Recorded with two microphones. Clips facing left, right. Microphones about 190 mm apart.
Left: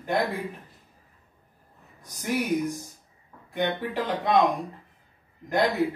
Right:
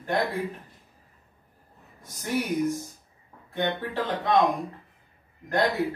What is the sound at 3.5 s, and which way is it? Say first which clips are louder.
Speech: left 1 dB; 15° left (ahead or behind).